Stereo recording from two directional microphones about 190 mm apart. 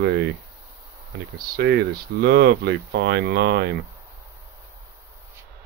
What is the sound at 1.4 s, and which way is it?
Speech, 55° right (ahead or behind).